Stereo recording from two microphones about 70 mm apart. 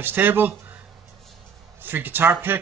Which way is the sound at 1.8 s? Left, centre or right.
Right.